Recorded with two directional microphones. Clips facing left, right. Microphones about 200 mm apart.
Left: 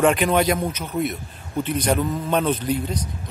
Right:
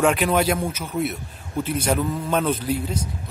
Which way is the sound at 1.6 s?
5° right (ahead or behind).